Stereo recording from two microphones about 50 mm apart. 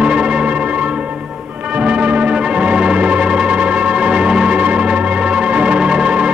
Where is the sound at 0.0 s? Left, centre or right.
Right.